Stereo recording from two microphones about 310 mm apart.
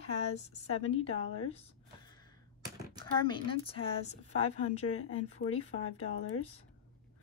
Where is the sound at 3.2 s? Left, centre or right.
Centre.